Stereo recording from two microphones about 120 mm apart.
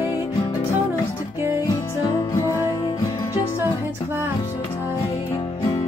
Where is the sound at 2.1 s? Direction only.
25° left (ahead or behind).